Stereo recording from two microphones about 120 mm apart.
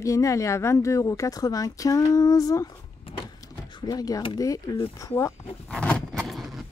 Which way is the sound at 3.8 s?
30° left (ahead or behind).